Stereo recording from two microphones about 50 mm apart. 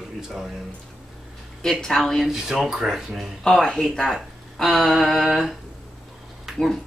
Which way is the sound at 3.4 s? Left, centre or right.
Centre.